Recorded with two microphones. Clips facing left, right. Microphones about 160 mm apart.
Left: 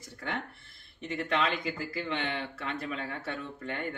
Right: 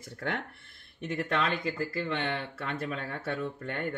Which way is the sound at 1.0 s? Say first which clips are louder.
Even; 45° right (ahead or behind).